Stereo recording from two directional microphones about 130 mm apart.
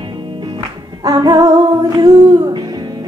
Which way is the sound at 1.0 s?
30° right (ahead or behind).